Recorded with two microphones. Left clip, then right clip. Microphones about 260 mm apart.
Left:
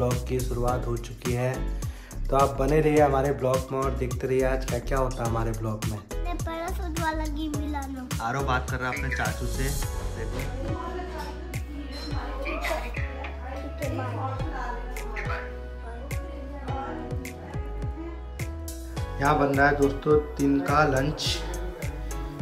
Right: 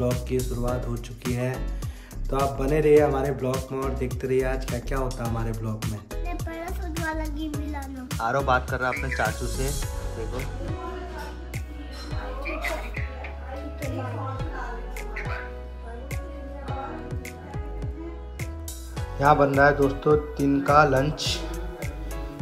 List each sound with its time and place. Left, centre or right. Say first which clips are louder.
0.0 s speech: right 1 dB; centre
12.1 s music: even; centre
18.9 s speech: right 4 dB; centre